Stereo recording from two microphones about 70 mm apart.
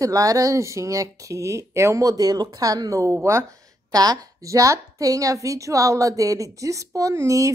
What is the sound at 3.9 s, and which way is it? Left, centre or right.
A woman's voice, right.